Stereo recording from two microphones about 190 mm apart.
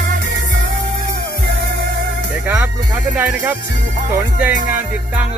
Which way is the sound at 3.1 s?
10° right (ahead or behind).